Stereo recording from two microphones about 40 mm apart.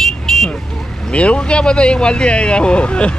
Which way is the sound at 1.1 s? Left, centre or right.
Left.